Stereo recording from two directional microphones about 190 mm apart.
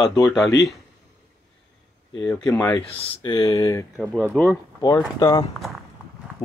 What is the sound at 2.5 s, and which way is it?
Speech, 5° left (ahead or behind).